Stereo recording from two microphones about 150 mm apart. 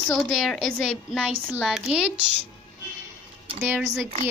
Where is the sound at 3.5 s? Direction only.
5° right (ahead or behind).